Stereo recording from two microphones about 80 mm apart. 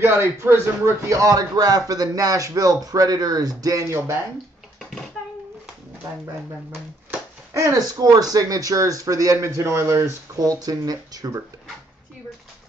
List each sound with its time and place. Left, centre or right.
0.0 s a man's voice: right
7.5 s speech: right